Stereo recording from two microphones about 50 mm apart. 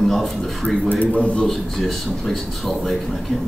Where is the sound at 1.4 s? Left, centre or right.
Centre.